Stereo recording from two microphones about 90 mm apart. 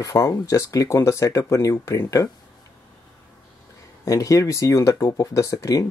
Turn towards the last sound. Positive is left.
turn(degrees=40)  # may be behind; listen again after turning